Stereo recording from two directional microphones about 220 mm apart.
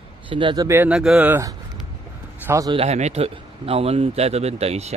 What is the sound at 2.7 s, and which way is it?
A man's voice, 30° right (ahead or behind).